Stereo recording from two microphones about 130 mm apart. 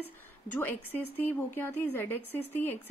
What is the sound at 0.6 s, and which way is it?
Speech, 15° left (ahead or behind).